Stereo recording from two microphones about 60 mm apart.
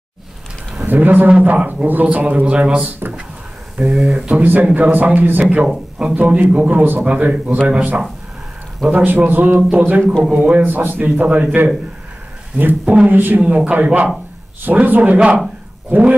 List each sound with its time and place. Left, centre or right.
0.8 s speech: right
3.0 s speech: right
3.7 s speech: centre
5.7 s speech: centre
6.1 s a man's voice: right
10.6 s a man's voice: right
11.2 s speech: right
12.5 s a man's voice: right
13.6 s speech: centre
15.1 s speech: centre